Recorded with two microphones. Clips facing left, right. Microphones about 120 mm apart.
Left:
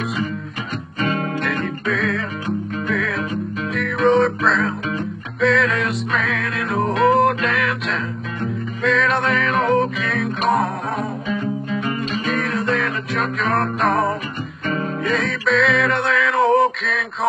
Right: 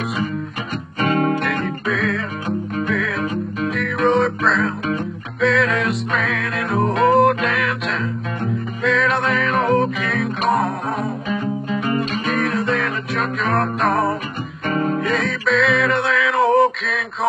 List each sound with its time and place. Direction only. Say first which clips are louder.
1.0 s music: right 5 dB; 45° right (ahead or behind)
1.4 s music: right 1 dB; centre (ahead or behind)
11.9 s music: right 3 dB; 50° right (ahead or behind)
12.3 s music: even; centre (ahead or behind)
14.7 s music: right 4 dB; 40° right (ahead or behind)
15.0 s music: even; centre (ahead or behind)